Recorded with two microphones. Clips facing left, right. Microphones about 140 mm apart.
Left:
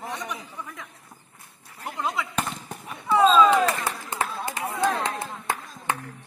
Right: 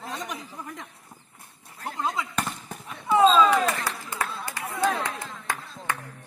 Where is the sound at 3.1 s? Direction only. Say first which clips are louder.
Even; 15° right (ahead or behind).